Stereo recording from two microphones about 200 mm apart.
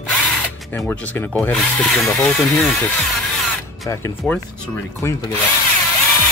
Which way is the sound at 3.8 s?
15° left (ahead or behind).